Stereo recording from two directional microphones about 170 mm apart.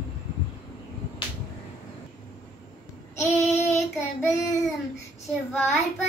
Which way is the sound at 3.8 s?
15° left (ahead or behind).